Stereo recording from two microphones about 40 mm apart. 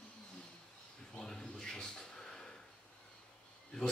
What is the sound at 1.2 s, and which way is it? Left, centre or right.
Speech, centre.